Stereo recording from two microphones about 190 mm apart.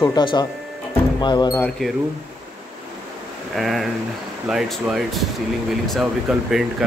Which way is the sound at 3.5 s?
Centre (ahead or behind).